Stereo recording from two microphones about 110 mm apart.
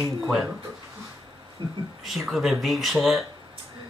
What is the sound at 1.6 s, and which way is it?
Speech, 50° right (ahead or behind).